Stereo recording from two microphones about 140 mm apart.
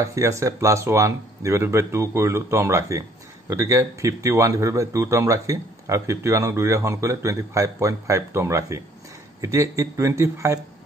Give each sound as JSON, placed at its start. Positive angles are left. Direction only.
{"t": 0.0, "sound": "speech", "side_deg": -20}